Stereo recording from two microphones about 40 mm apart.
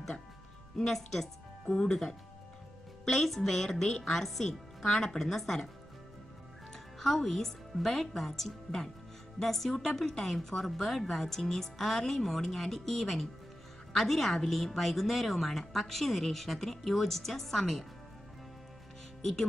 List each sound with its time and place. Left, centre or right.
0.7 s a woman's voice: centre
6.7 s a woman's voice: centre